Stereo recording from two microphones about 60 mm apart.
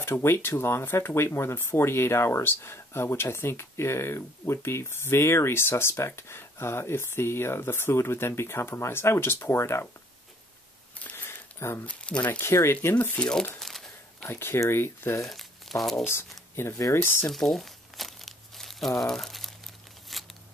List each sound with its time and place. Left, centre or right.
0.0 s speech: left
11.1 s a sound: left
11.8 s speech: left
12.2 s speech: left
12.9 s speech: left
13.3 s speech: centre
14.2 s speech: left
17.3 s crumpling: centre
20.1 s a sound: centre